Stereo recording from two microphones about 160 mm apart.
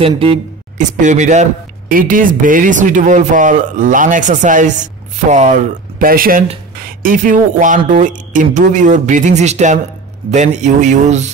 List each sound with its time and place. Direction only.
0.0 s speech: 35° right (ahead or behind)
0.7 s speech: 50° right (ahead or behind)